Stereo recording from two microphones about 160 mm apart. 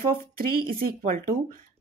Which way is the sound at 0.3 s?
65° right (ahead or behind).